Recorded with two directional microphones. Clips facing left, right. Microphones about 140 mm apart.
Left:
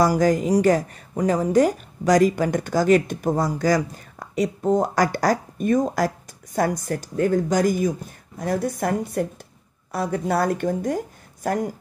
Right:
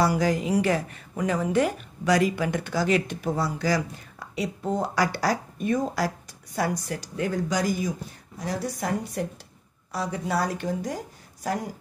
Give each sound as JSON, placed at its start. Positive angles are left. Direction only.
{"t": 0.0, "sound": "a woman's voice", "side_deg": 45}